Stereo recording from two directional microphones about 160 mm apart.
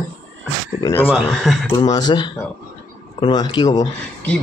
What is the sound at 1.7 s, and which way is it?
Speech, 25° left (ahead or behind).